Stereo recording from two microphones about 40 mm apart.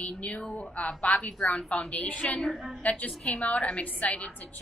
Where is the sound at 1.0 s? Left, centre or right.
Left.